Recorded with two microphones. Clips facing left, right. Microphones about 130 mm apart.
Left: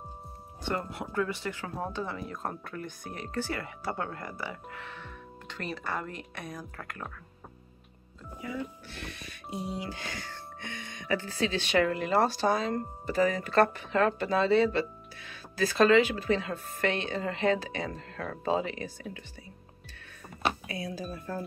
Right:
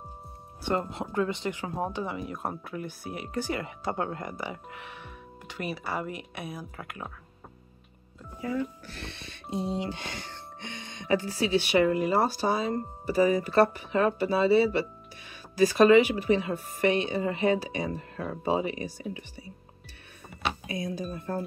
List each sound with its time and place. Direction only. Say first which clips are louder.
0.7 s speech: right 4 dB; 25° right (ahead or behind)
8.4 s music: right 6 dB; 40° right (ahead or behind); by 11.2 s 25° right (ahead or behind)
11.2 s speech: right 4 dB; 10° right (ahead or behind)
20.4 s a sound: even; 35° left (ahead or behind)